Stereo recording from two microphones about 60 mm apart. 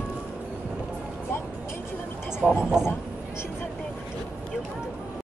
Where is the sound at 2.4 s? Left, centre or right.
Centre.